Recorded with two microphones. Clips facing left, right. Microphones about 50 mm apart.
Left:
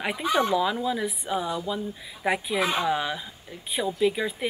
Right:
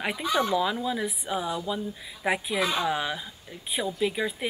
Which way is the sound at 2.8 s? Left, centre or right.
Centre.